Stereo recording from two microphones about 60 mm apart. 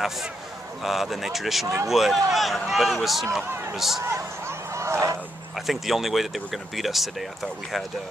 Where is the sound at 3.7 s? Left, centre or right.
Centre.